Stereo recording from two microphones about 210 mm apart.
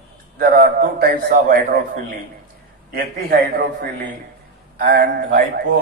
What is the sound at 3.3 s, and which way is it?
A man's voice, 45° right (ahead or behind).